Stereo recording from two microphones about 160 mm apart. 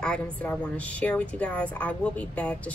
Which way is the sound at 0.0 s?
5° left (ahead or behind).